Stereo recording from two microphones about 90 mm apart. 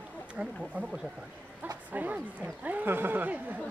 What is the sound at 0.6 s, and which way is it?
Speech, 15° right (ahead or behind).